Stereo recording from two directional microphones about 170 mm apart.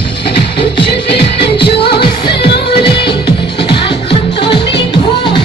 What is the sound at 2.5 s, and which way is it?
Music, 70° left (ahead or behind).